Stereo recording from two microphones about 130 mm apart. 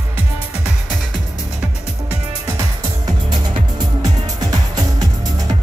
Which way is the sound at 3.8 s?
30° right (ahead or behind).